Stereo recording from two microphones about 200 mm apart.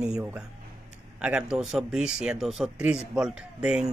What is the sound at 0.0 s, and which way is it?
Speech, 5° right (ahead or behind).